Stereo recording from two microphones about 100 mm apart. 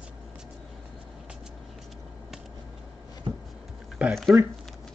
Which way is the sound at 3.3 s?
55° right (ahead or behind).